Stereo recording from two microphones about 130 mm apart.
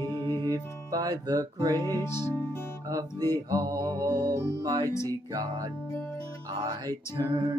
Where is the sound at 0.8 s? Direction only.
30° right (ahead or behind).